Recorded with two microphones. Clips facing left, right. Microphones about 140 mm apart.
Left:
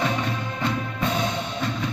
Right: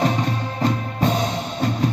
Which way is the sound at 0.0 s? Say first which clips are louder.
Right 4 dB; 40° right (ahead or behind).